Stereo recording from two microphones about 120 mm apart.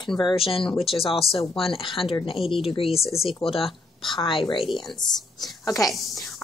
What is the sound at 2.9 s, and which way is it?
Speech, centre (ahead or behind).